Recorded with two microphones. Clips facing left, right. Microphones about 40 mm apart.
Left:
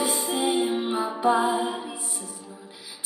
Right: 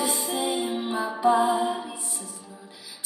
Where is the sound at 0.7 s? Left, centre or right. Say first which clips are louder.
Left 2 dB; left.